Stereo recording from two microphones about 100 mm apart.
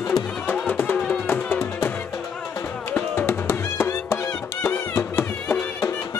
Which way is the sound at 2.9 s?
20° left (ahead or behind).